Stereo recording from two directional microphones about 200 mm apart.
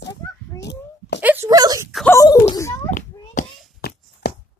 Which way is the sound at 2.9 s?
40° left (ahead or behind).